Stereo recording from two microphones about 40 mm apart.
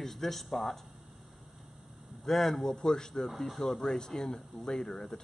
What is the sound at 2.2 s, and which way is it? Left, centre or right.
Speech, centre.